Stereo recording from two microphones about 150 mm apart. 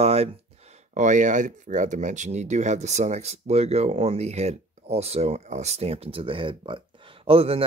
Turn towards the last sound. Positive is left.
turn(degrees=-40)  # may be behind; listen again after turning